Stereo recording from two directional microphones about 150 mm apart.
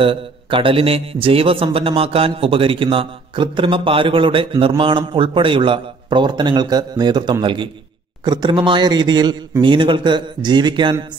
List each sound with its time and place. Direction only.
0.0 s a man's voice: 35° right (ahead or behind)